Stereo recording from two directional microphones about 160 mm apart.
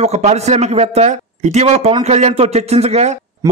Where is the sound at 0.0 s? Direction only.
45° right (ahead or behind).